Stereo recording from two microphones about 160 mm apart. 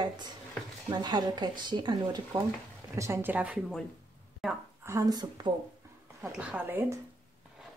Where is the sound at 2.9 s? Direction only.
15° right (ahead or behind).